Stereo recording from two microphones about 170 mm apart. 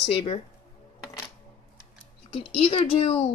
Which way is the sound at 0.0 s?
35° left (ahead or behind).